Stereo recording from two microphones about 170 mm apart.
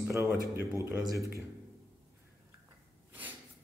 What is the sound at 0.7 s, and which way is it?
Speech, 15° right (ahead or behind).